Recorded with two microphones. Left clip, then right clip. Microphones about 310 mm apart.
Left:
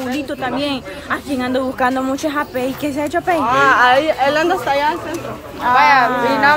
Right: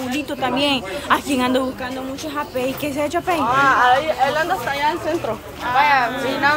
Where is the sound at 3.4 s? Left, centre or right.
Left.